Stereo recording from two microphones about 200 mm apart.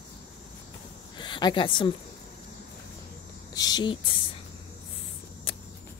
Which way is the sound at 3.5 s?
20° left (ahead or behind).